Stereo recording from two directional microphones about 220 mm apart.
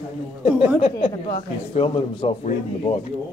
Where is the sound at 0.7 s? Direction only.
25° left (ahead or behind).